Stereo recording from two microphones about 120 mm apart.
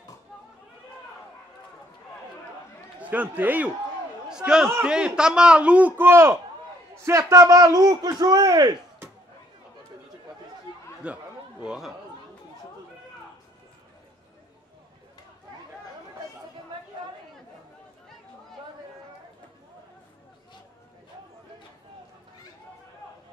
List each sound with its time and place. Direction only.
3.0 s a man's voice: 15° right (ahead or behind); by 8.7 s 35° right (ahead or behind)
11.0 s a man's voice: 10° right (ahead or behind)